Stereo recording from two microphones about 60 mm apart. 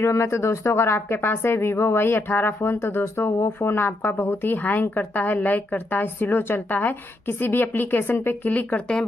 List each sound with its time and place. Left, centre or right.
0.0 s speech: left